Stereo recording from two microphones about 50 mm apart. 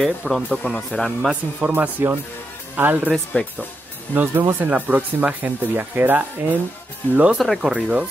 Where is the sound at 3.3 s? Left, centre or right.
Left.